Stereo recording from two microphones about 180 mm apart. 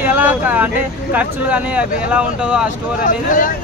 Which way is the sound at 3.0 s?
50° left (ahead or behind).